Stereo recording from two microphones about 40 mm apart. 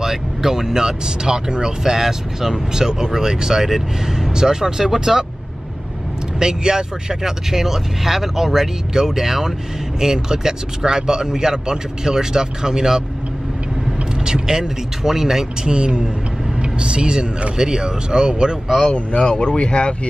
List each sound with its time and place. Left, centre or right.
0.0 s speech: centre
6.4 s speech: centre
14.2 s speech: centre
15.7 s speech: right
18.9 s speech: left